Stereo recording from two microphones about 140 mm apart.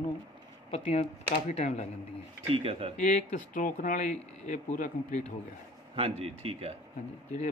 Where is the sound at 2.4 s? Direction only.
45° right (ahead or behind).